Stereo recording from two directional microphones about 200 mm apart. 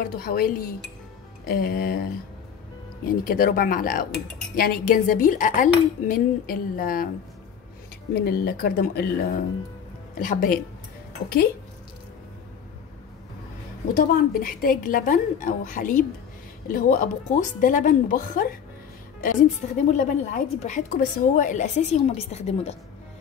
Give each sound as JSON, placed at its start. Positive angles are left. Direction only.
{"t": 0.0, "sound": "speech", "side_deg": 45}
{"t": 3.3, "sound": "speech", "side_deg": 45}
{"t": 8.1, "sound": "speech", "side_deg": 50}
{"t": 13.9, "sound": "a woman's voice", "side_deg": 45}
{"t": 19.9, "sound": "a woman's voice", "side_deg": 40}